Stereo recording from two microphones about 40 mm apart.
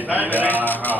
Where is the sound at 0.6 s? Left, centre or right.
Left.